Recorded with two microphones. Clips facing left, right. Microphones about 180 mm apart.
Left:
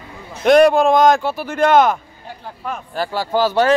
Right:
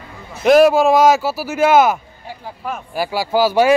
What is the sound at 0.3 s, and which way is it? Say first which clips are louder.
Speech: right 1 dB; 5° right (ahead or behind).